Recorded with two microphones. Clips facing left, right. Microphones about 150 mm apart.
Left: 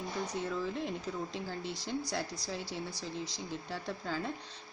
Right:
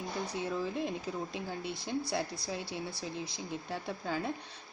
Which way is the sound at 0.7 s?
10° right (ahead or behind).